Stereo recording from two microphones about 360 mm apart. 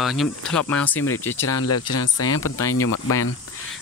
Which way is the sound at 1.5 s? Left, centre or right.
Left.